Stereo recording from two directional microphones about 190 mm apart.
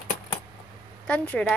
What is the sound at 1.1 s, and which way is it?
Speech, 5° left (ahead or behind).